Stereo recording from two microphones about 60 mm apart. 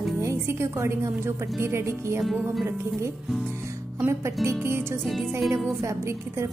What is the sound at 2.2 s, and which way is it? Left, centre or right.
Speech, centre.